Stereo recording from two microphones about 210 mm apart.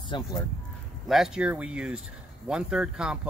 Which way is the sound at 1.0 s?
Centre (ahead or behind).